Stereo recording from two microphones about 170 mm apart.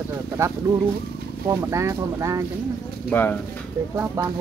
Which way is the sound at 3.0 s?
10° left (ahead or behind).